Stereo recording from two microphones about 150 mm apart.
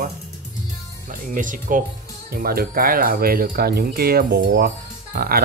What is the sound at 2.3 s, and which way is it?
Speech, 90° right.